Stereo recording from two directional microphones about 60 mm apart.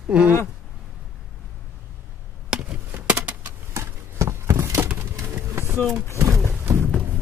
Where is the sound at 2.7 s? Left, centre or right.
Right.